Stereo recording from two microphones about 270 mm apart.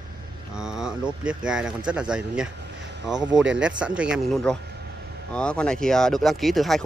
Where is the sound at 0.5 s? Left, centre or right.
Centre.